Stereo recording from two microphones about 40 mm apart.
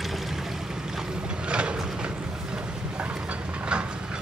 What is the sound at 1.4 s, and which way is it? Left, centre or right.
Vehicle, right.